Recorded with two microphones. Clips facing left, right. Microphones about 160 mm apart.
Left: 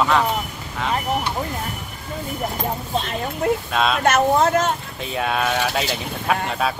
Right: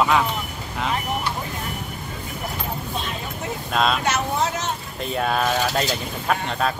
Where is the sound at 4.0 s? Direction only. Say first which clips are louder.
Left 6 dB; 55° left (ahead or behind).